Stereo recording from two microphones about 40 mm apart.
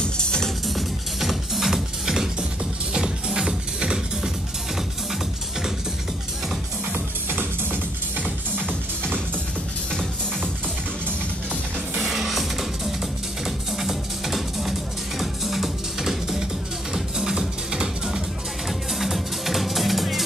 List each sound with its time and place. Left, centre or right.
0.0 s music: left
0.7 s music: centre
2.9 s music: centre
6.9 s music: right
8.2 s music: right
12.0 s music: centre
13.7 s music: centre
18.7 s music: centre